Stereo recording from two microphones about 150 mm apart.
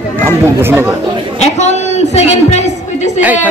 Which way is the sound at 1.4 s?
50° left (ahead or behind).